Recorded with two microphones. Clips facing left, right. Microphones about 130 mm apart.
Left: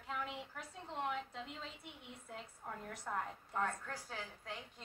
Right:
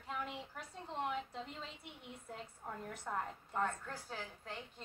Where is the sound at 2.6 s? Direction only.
5° right (ahead or behind).